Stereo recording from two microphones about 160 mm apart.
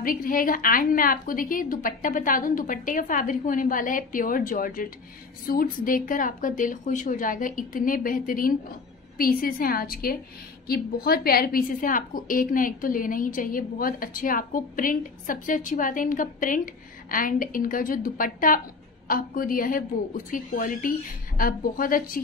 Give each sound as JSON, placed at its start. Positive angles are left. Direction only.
{"t": 0.0, "sound": "a woman's voice", "side_deg": 60}